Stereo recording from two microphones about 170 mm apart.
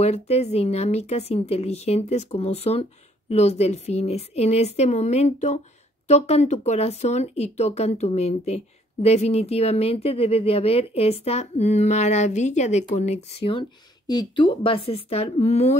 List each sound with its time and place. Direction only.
0.0 s speech: 40° left (ahead or behind)